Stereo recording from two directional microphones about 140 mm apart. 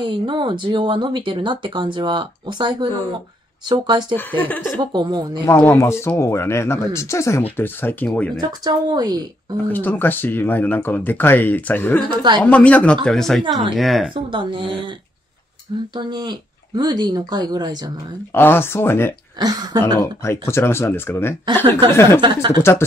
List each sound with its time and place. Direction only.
0.0 s speech: 35° right (ahead or behind)
4.2 s speech: 10° left (ahead or behind)
4.7 s speech: 35° right (ahead or behind)
5.4 s speech: 15° left (ahead or behind)
8.4 s a woman's voice: 30° right (ahead or behind)
9.7 s speech: 15° left (ahead or behind)
14.1 s speech: 35° right (ahead or behind)
15.9 s speech: 30° right (ahead or behind)
18.3 s speech: 15° left (ahead or behind)
19.3 s a woman's voice: 30° right (ahead or behind)
20.0 s speech: 20° left (ahead or behind)
21.6 s speech: 35° right (ahead or behind)
22.5 s speech: 20° left (ahead or behind)